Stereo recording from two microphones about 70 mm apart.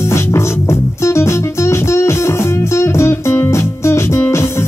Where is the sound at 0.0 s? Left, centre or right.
Left.